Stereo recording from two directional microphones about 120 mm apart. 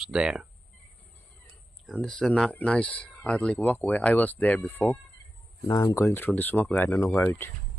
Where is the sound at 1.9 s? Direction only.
5° left (ahead or behind); by 7.0 s 25° left (ahead or behind).